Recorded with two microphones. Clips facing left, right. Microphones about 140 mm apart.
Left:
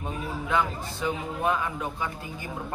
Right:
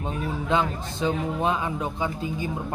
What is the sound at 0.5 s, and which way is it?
A man's voice, 20° right (ahead or behind).